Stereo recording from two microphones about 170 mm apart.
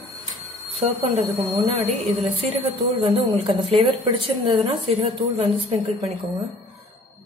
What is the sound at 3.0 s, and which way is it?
A woman's voice, 30° right (ahead or behind).